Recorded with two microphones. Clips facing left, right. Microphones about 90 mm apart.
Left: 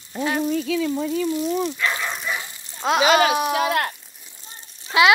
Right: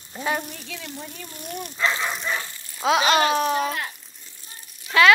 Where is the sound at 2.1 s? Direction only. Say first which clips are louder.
Even; 15° left (ahead or behind).